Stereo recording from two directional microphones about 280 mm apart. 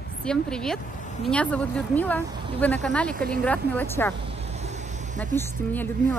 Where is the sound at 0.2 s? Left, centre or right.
Centre.